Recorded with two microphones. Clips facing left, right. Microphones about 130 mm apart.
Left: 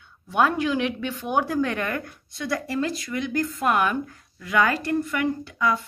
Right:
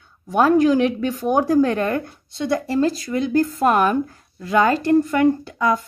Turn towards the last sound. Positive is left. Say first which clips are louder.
# right 6 dB
turn(degrees=-40)  # may be behind; listen again after turning